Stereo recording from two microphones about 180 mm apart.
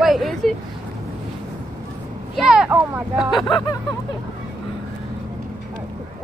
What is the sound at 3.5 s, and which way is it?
Speech, 25° left (ahead or behind).